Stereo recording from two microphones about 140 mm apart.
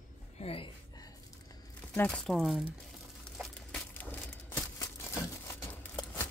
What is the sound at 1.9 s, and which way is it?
Speech, 10° left (ahead or behind).